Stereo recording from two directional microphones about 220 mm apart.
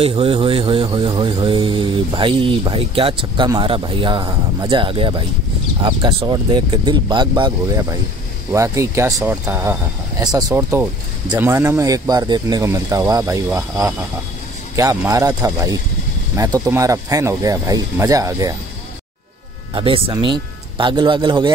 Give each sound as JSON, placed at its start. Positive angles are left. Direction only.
{"t": 0.0, "sound": "speech", "side_deg": -25}
{"t": 14.8, "sound": "speech", "side_deg": -15}
{"t": 19.7, "sound": "speech", "side_deg": -25}